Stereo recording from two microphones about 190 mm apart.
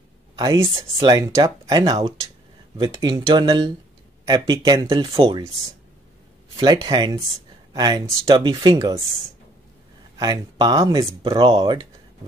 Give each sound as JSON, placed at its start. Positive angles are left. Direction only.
{"t": 0.9, "sound": "speech", "side_deg": -15}
{"t": 6.5, "sound": "speech", "side_deg": -25}
{"t": 10.1, "sound": "speech", "side_deg": -20}